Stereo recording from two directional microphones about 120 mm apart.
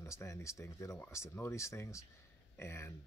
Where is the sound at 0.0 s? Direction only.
25° left (ahead or behind).